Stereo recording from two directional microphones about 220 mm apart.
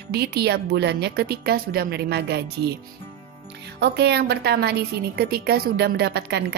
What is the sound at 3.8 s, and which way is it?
A woman's voice, 50° right (ahead or behind).